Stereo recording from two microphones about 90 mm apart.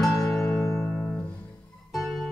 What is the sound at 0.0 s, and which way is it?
Music, 5° left (ahead or behind).